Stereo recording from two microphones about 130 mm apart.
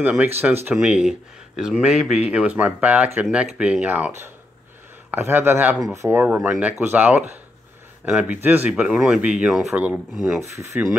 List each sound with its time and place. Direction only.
0.0 s speech: 10° right (ahead or behind)